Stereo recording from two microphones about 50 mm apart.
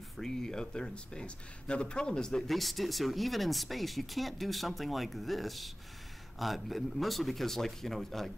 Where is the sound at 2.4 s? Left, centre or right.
Centre.